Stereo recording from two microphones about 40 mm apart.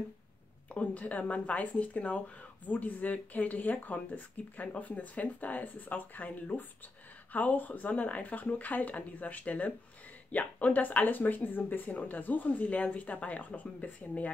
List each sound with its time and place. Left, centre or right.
0.7 s speech: left